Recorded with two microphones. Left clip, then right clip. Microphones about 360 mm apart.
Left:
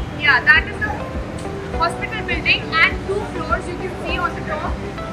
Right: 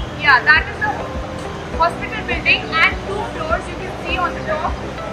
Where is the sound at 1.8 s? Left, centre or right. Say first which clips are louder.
Right 3 dB; centre.